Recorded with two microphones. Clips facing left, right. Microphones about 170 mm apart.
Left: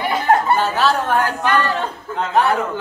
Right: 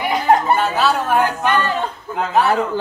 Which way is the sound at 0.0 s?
15° right (ahead or behind).